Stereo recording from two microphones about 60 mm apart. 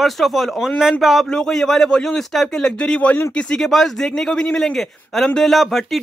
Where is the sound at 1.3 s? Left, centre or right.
Centre.